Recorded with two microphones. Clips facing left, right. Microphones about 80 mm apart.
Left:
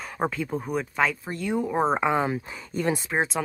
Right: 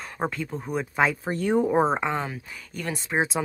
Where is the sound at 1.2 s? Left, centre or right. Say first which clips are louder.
Right 4 dB; right.